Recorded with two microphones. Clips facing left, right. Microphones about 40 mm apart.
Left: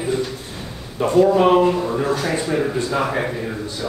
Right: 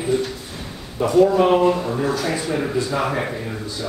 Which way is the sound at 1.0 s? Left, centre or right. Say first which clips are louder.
Even; left.